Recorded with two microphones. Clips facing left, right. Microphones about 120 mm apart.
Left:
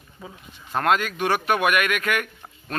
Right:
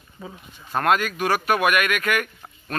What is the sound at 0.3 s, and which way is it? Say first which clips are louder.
Speech: right 1 dB; 10° right (ahead or behind).